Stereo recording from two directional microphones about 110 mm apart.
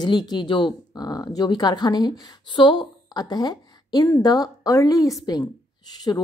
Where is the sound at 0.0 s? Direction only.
40° left (ahead or behind).